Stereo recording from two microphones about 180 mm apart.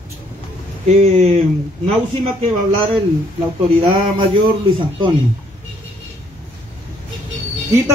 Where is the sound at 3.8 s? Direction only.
30° right (ahead or behind).